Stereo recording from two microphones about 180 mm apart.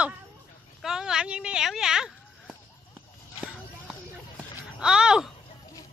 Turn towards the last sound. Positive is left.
turn(degrees=-5)  # may be behind; listen again after turning